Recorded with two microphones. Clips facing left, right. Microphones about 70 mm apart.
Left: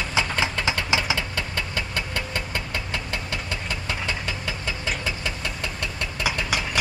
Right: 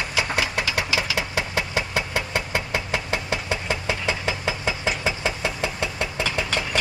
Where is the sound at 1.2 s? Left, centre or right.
Centre.